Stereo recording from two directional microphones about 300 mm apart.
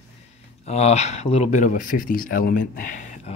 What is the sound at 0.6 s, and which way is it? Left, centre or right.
Speech, left.